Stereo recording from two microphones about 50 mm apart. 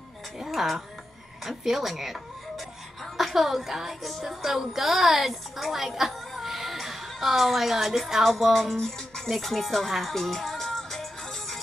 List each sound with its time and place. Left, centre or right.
0.4 s a sound: centre
1.4 s speech: centre
3.2 s music: centre
8.7 s speech: centre